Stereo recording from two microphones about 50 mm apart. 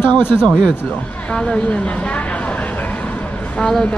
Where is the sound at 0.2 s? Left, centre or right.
Left.